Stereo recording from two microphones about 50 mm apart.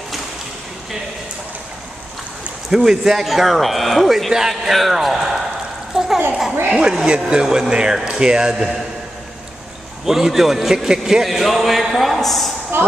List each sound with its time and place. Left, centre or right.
2.7 s speech: centre
5.9 s a sound: centre
6.7 s speech: centre
10.0 s speech: centre
12.7 s a woman's voice: right